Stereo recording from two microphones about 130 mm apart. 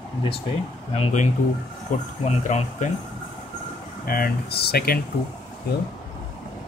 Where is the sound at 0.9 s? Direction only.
70° left (ahead or behind).